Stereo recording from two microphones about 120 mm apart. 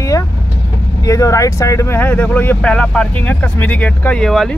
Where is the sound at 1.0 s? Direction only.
25° left (ahead or behind); by 4.6 s 5° left (ahead or behind).